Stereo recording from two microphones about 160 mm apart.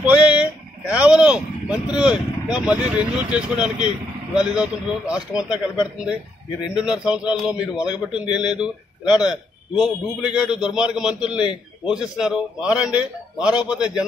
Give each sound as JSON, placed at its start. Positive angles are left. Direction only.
{"t": 0.0, "sound": "a sound", "side_deg": -10}
{"t": 0.9, "sound": "a man's voice", "side_deg": -5}
{"t": 11.3, "sound": "a man's voice", "side_deg": 30}
{"t": 11.9, "sound": "a man's voice", "side_deg": -5}